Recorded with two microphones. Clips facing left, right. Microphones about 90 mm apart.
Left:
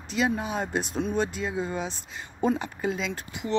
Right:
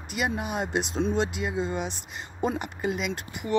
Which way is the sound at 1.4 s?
15° right (ahead or behind).